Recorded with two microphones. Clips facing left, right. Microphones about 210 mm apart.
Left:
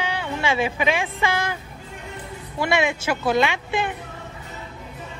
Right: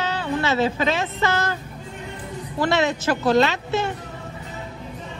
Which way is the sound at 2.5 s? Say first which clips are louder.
Right 1 dB; 10° left (ahead or behind).